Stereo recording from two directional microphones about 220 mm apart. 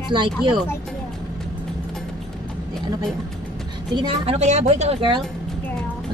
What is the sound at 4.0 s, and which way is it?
Speech, 25° right (ahead or behind).